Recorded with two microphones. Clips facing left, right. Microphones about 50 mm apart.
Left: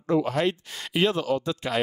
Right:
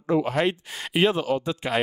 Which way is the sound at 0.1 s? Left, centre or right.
Right.